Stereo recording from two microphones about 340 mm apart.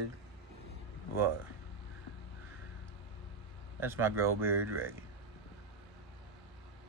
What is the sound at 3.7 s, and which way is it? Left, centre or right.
Speech, centre.